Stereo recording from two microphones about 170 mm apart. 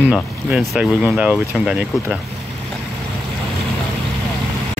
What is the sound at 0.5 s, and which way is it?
Speech, 5° right (ahead or behind).